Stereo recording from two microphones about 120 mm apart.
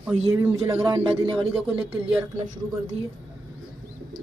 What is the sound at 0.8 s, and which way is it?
Speech, 45° right (ahead or behind).